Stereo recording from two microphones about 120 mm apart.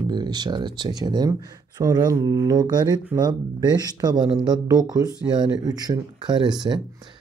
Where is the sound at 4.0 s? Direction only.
35° right (ahead or behind).